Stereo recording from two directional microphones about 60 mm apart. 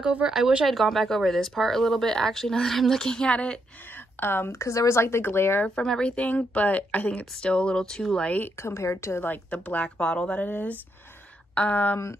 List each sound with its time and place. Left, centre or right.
0.0 s speech: centre
0.7 s speech: centre
4.2 s a woman's voice: left
4.5 s a woman's voice: left
5.8 s a woman's voice: centre
7.4 s speech: centre
8.6 s a woman's voice: left
9.2 s a woman's voice: left
9.9 s a woman's voice: centre